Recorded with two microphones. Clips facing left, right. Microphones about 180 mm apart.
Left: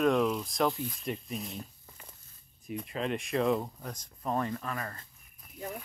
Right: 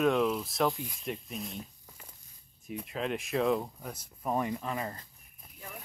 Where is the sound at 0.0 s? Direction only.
Centre (ahead or behind).